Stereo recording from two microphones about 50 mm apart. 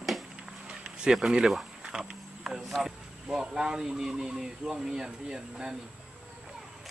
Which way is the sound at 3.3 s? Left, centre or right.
Centre.